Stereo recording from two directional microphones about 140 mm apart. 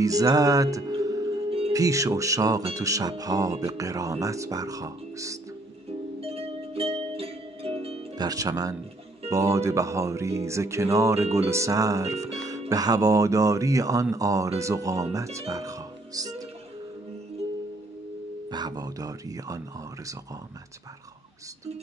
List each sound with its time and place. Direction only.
0.0 s music: 25° right (ahead or behind)
1.7 s speech: 25° right (ahead or behind)
6.2 s music: 45° right (ahead or behind)
8.2 s speech: 25° right (ahead or behind)
18.5 s speech: 30° right (ahead or behind)